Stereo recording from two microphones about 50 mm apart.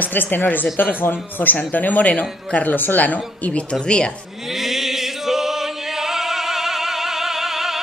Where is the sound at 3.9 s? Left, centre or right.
Centre.